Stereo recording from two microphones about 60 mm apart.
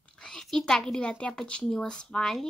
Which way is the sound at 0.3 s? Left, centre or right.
Centre.